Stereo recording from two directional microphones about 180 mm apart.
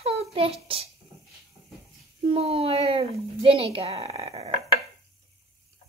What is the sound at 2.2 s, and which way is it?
Speech, 30° right (ahead or behind).